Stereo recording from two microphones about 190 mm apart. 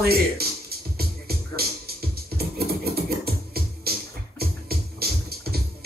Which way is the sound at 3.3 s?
55° right (ahead or behind).